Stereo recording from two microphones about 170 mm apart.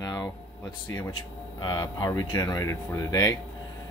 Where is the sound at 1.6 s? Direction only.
20° left (ahead or behind).